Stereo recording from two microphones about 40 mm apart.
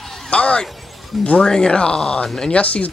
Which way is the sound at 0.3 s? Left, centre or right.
Left.